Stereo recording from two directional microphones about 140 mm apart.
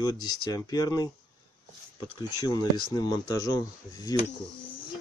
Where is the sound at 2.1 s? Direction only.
30° left (ahead or behind).